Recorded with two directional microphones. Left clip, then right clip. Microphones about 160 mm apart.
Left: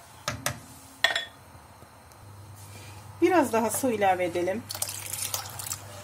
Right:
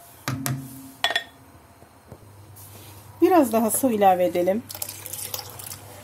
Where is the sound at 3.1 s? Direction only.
40° right (ahead or behind).